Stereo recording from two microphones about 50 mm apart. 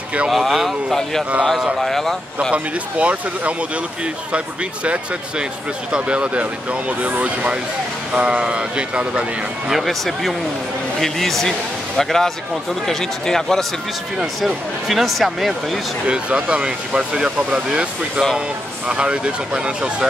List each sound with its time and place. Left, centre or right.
0.3 s speech: centre
2.5 s speech: right
4.8 s speech: right
9.7 s speech: centre
14.1 s speech: centre
16.1 s speech: right